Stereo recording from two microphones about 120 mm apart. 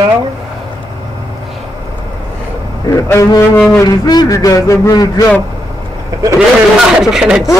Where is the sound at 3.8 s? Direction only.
35° left (ahead or behind).